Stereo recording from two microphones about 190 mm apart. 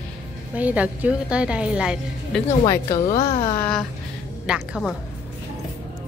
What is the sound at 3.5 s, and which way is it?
A woman's voice, 5° left (ahead or behind).